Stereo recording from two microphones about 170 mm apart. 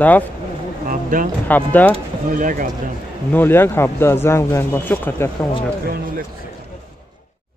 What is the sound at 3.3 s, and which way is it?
Speech, 15° left (ahead or behind).